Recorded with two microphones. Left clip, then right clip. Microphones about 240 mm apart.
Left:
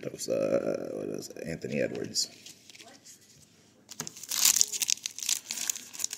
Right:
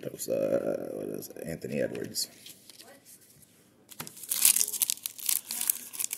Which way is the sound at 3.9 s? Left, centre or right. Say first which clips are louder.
Left 3 dB; left.